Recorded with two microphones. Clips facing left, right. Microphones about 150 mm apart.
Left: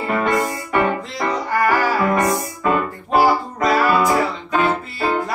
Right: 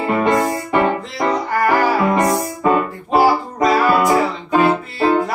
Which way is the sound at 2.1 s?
20° right (ahead or behind).